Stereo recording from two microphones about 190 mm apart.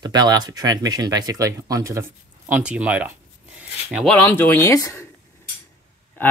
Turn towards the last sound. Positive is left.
turn(degrees=10)  # may be behind; listen again after turning